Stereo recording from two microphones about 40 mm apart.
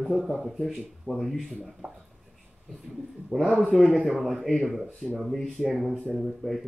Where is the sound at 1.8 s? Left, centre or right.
Right.